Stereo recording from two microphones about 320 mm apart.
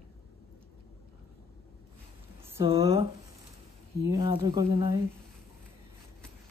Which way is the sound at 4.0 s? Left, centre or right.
Centre.